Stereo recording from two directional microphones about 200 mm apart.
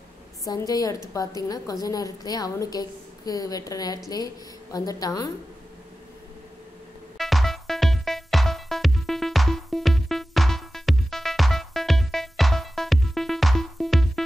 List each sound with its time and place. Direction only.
0.5 s a woman's voice: 20° left (ahead or behind)
7.2 s music: centre (ahead or behind)